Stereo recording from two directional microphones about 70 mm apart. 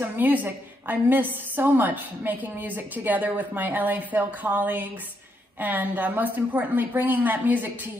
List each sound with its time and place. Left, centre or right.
0.0 s a woman's voice: right